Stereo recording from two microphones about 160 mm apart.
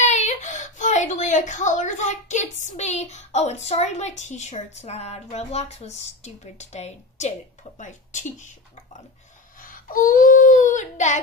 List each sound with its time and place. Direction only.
0.0 s a woman's voice: 45° left (ahead or behind)
9.6 s speech: 60° left (ahead or behind)